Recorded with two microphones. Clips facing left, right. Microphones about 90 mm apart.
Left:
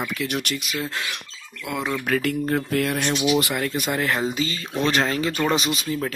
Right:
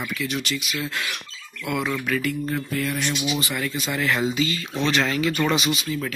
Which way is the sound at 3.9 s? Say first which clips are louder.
Right 2 dB; 40° left (ahead or behind).